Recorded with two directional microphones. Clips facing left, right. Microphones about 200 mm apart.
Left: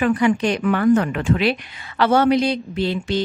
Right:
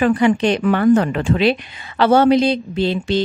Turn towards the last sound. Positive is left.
turn(degrees=-25)  # may be behind; listen again after turning